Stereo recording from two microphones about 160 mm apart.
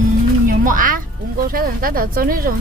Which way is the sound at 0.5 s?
60° right (ahead or behind).